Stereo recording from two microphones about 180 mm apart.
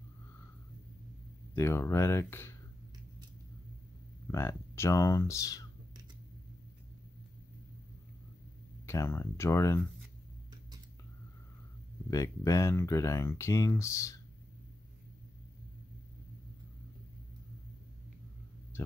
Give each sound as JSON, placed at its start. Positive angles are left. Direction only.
{"t": 1.5, "sound": "speech", "side_deg": 15}
{"t": 4.3, "sound": "speech", "side_deg": 15}
{"t": 8.8, "sound": "speech", "side_deg": 15}
{"t": 12.1, "sound": "speech", "side_deg": 15}